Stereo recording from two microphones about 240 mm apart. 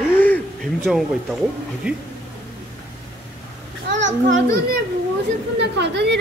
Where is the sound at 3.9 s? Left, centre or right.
Right.